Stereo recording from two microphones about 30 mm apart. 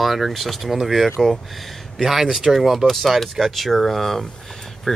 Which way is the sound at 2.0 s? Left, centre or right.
Centre.